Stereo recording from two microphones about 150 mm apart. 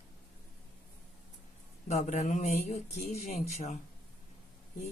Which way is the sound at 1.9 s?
55° left (ahead or behind).